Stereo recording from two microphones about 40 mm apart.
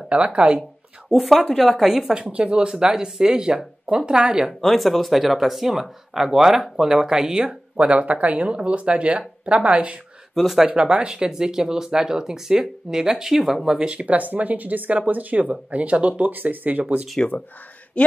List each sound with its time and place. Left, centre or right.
0.1 s speech: right
1.1 s a woman's voice: centre
2.1 s speech: right
2.4 s speech: centre
4.5 s speech: centre; by 9.9 s right
10.3 s speech: centre
10.7 s speech: right; by 13.6 s centre
13.7 s speech: right
18.0 s speech: left